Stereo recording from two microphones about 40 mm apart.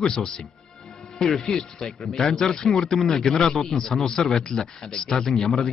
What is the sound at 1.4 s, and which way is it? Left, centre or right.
Speech, centre.